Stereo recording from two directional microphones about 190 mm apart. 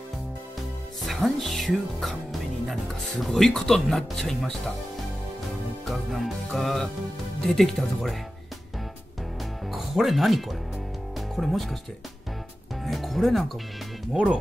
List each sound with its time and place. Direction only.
1.0 s speech: centre (ahead or behind)
5.9 s music: centre (ahead or behind)
7.4 s speech: centre (ahead or behind)
9.7 s music: centre (ahead or behind)
11.1 s speech: centre (ahead or behind)
12.8 s music: centre (ahead or behind)
14.1 s speech: 5° right (ahead or behind)